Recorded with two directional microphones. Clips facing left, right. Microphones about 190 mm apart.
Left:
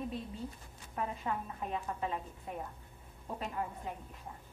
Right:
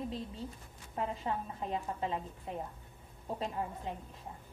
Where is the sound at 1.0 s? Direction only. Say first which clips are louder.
Right 1 dB; 30° right (ahead or behind).